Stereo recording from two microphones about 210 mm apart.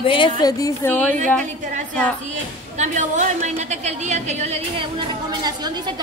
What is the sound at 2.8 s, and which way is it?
A woman's voice, 35° right (ahead or behind).